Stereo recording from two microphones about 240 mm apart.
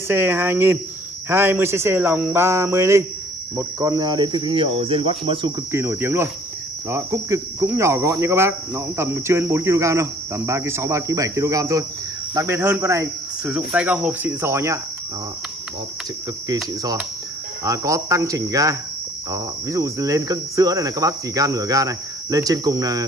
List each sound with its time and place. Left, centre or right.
0.1 s cricket: centre
3.5 s speech: centre
6.9 s cricket: centre
16.4 s cricket: centre